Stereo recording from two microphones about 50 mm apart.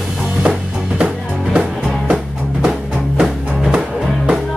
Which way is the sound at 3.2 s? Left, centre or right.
Centre.